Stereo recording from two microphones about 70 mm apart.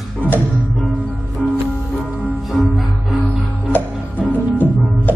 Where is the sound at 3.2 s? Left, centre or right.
Right.